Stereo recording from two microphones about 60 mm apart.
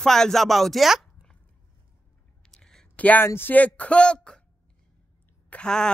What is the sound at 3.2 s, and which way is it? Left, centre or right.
Speech, left.